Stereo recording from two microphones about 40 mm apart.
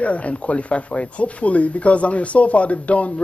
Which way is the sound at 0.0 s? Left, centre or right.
Left.